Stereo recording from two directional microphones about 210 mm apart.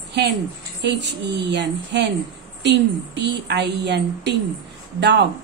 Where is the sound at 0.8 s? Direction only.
55° right (ahead or behind).